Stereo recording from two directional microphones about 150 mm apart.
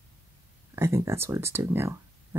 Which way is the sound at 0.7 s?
15° right (ahead or behind).